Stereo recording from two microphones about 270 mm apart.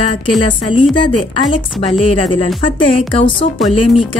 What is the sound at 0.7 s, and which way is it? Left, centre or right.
Speech, centre.